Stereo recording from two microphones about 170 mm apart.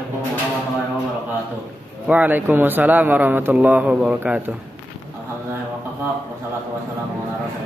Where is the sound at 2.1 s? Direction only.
10° right (ahead or behind).